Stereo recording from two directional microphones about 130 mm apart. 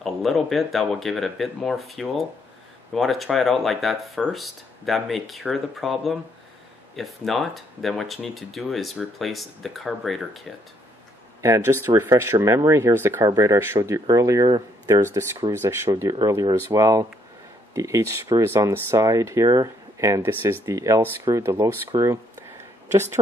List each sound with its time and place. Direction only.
0.0 s speech: centre (ahead or behind)
11.4 s speech: 20° right (ahead or behind)